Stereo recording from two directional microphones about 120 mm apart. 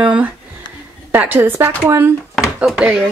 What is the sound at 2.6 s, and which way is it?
Speech, 10° right (ahead or behind).